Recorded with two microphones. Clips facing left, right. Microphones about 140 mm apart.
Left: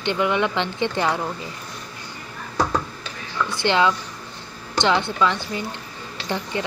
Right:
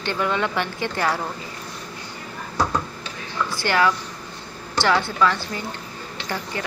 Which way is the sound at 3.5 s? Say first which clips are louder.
Left 1 dB; 20° left (ahead or behind).